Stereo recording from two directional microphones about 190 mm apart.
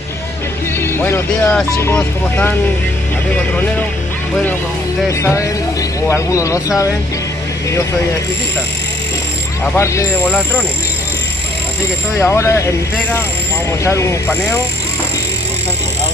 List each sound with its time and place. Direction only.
0.7 s speech: 10° left (ahead or behind)
5.2 s speech: 15° left (ahead or behind)
9.8 s speech: 15° left (ahead or behind)
12.2 s speech: 15° left (ahead or behind)
13.8 s speech: 15° left (ahead or behind)